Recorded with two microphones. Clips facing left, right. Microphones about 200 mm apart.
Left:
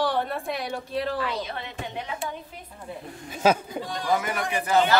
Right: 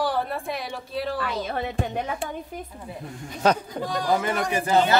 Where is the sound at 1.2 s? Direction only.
45° right (ahead or behind).